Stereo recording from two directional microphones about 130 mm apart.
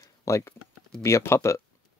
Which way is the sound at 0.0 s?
25° left (ahead or behind).